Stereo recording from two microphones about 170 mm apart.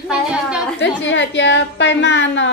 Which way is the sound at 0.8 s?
90° left.